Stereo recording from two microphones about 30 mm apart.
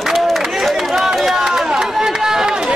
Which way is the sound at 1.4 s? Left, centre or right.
Centre.